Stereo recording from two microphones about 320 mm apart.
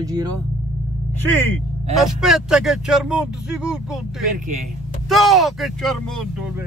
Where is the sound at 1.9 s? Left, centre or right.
Centre.